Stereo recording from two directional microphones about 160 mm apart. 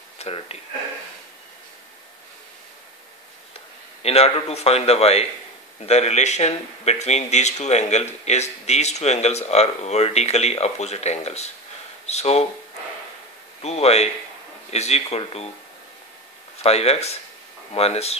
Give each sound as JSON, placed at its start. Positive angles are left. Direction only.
{"t": 0.2, "sound": "speech", "side_deg": 40}
{"t": 4.0, "sound": "a man's voice", "side_deg": 40}
{"t": 13.6, "sound": "a man's voice", "side_deg": 40}
{"t": 16.5, "sound": "a man's voice", "side_deg": 40}